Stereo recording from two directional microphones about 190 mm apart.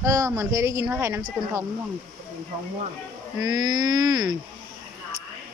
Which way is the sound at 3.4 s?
20° right (ahead or behind).